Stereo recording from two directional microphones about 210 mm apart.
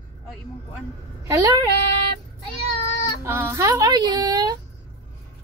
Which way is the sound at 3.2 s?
10° right (ahead or behind).